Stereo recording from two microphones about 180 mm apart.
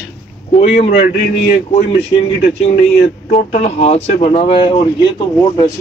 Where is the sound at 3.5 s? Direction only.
40° left (ahead or behind).